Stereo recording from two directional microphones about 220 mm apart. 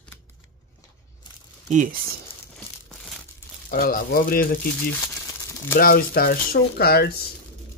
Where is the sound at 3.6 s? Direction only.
40° left (ahead or behind).